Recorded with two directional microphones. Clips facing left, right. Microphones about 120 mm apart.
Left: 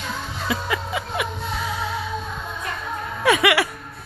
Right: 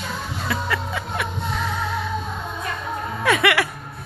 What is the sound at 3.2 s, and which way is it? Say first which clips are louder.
Music: left 1 dB; 5° left (ahead or behind).